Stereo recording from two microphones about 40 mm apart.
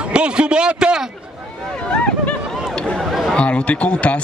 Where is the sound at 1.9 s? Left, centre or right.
Left.